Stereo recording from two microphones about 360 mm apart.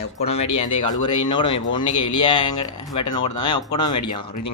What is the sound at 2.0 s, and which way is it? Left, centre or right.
Speech, left.